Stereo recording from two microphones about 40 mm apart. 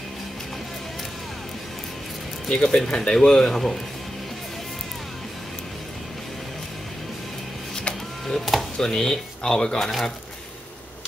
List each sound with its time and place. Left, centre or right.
2.5 s speech: left
8.3 s speech: centre
8.7 s speech: centre